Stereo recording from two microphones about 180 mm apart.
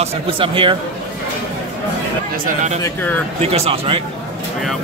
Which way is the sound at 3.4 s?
35° right (ahead or behind).